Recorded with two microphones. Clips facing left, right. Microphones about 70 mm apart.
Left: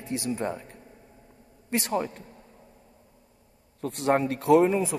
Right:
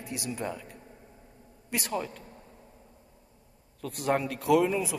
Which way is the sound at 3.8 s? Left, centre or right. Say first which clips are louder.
Left 4 dB; left.